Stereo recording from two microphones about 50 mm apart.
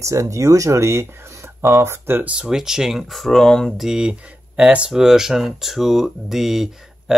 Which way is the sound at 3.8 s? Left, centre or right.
Centre.